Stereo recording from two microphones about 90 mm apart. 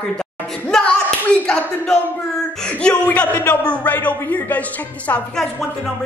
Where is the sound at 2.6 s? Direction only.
10° left (ahead or behind).